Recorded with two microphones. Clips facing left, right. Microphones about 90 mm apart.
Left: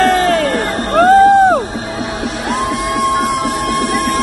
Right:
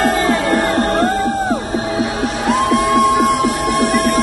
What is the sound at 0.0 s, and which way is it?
Music, 70° left (ahead or behind).